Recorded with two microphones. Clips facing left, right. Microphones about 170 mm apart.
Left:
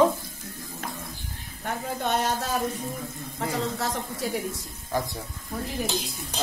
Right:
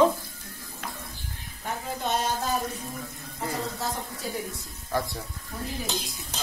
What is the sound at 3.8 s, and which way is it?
Speech, 90° left.